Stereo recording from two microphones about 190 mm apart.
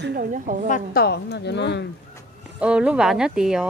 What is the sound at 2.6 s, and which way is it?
Speech, 5° right (ahead or behind).